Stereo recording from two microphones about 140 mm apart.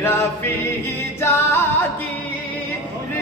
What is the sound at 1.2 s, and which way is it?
Music, 15° left (ahead or behind).